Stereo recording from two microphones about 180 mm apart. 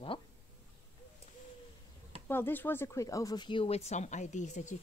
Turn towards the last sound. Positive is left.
turn(degrees=40)  # may be behind; listen again after turning